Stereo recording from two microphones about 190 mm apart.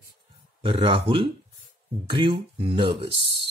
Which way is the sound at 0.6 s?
25° right (ahead or behind).